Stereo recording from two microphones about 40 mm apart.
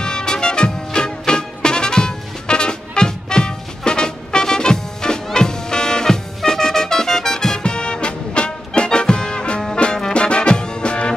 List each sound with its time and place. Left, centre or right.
0.0 s music: centre